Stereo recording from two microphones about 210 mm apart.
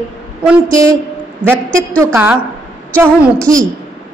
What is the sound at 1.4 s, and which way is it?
A woman's voice, 10° right (ahead or behind).